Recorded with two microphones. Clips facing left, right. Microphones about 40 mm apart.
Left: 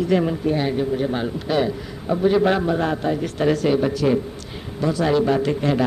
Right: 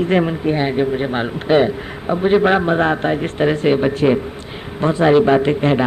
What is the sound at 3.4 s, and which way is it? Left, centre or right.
Speech, right.